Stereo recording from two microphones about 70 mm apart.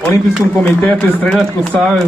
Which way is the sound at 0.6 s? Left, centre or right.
Left.